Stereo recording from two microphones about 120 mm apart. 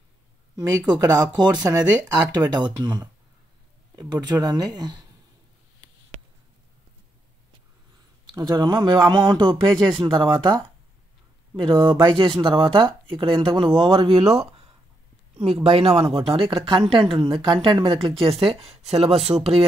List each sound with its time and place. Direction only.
0.6 s speech: 30° right (ahead or behind)
8.4 s speech: 40° right (ahead or behind)
11.6 s speech: 40° right (ahead or behind)
15.3 s speech: 60° right (ahead or behind)
19.3 s speech: 25° right (ahead or behind)